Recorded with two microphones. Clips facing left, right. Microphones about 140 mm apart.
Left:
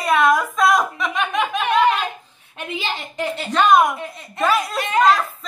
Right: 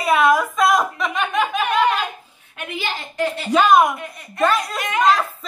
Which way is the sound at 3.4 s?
5° right (ahead or behind).